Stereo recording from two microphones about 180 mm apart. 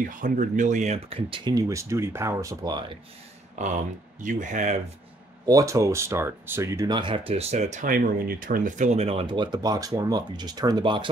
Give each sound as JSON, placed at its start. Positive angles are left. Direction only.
{"t": 0.0, "sound": "speech", "side_deg": -45}
{"t": 3.5, "sound": "speech", "side_deg": -45}
{"t": 5.4, "sound": "speech", "side_deg": -20}